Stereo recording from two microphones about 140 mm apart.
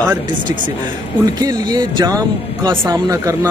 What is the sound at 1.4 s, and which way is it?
Speech, 30° right (ahead or behind).